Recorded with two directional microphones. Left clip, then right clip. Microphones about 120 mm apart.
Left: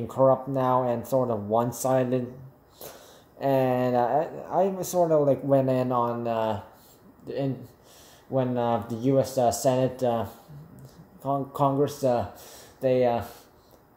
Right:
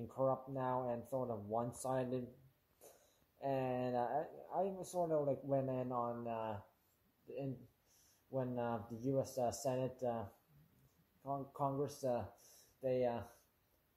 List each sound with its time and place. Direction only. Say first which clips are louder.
0.1 s speech: left 17 dB; 15° left (ahead or behind)
3.3 s speech: left 16 dB; 20° left (ahead or behind)
8.3 s speech: left 16 dB; 5° left (ahead or behind)
11.2 s speech: left 16 dB; 15° left (ahead or behind)
11.8 s speech: left 16 dB; centre (ahead or behind)